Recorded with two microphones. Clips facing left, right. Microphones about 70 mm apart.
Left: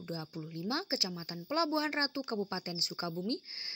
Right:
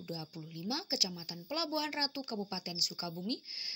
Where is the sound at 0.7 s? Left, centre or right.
Left.